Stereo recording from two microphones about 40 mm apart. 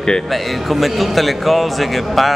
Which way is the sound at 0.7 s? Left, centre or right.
Centre.